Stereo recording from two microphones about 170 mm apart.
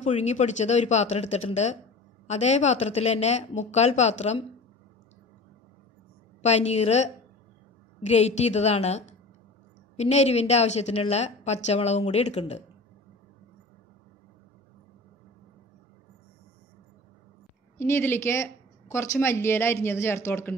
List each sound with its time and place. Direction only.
0.0 s speech: 40° left (ahead or behind)
6.4 s speech: 40° left (ahead or behind)
8.1 s speech: 40° left (ahead or behind)
17.7 s speech: 15° left (ahead or behind)